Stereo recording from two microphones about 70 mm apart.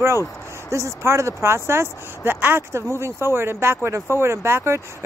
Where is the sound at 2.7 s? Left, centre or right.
Right.